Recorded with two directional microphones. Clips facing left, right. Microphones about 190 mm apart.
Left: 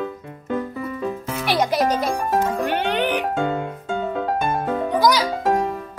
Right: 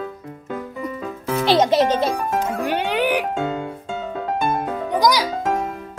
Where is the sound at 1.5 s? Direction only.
25° right (ahead or behind).